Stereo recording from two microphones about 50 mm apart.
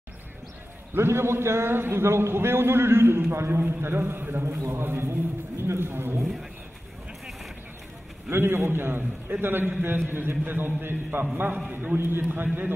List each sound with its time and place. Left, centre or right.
0.9 s a man's voice: right
4.5 s a man's voice: right
8.3 s a man's voice: right